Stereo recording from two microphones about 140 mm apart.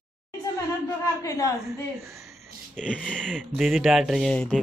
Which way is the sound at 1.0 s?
25° left (ahead or behind).